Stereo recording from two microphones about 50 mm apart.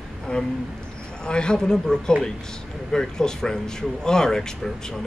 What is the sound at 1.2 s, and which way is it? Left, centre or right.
Speech, centre.